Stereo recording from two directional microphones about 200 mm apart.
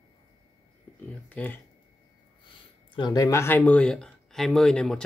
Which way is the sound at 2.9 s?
20° left (ahead or behind).